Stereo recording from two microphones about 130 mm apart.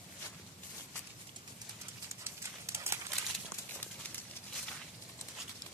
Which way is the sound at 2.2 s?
20° right (ahead or behind).